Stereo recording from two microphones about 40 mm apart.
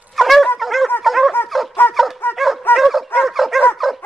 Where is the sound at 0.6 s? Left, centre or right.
Centre.